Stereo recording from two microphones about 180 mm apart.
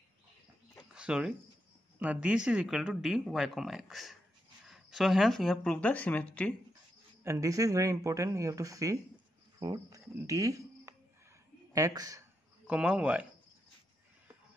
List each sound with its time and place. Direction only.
0.9 s speech: 5° right (ahead or behind)
7.2 s speech: 15° right (ahead or behind)
12.6 s speech: 5° right (ahead or behind)